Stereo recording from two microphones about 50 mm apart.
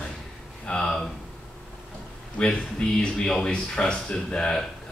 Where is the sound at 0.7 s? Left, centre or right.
Centre.